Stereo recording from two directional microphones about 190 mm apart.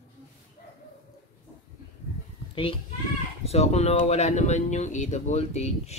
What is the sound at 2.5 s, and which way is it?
A child's voice, 30° left (ahead or behind).